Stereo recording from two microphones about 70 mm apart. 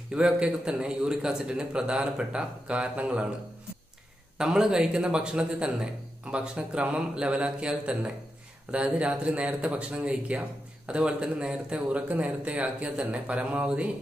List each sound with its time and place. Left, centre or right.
0.1 s a man's voice: centre
4.4 s a man's voice: centre